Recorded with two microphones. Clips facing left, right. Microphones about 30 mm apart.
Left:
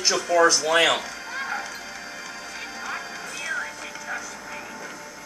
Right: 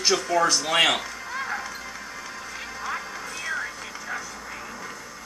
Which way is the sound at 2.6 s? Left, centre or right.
Centre.